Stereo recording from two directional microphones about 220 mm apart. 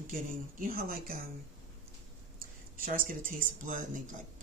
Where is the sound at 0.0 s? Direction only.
40° right (ahead or behind).